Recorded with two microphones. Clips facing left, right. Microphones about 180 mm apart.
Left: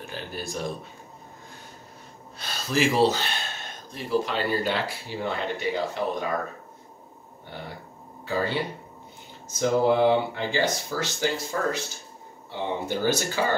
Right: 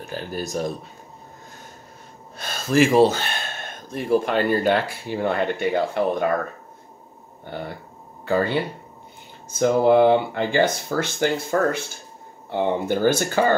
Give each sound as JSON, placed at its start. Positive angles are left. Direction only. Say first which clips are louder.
{"t": 0.0, "sound": "a sound", "louder": "right 5 dB", "side_deg": -40}
{"t": 2.3, "sound": "speech", "louder": "right 7 dB", "side_deg": -50}
{"t": 9.5, "sound": "speech", "louder": "right 5 dB", "side_deg": -55}